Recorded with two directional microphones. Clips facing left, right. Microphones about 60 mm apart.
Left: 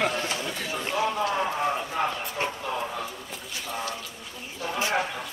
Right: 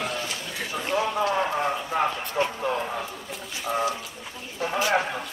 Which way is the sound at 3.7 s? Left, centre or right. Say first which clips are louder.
Right 8 dB; centre.